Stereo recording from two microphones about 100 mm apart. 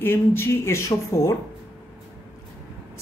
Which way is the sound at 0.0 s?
20° left (ahead or behind).